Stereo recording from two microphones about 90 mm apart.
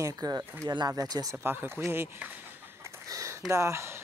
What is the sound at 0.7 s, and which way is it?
Speech, 45° right (ahead or behind).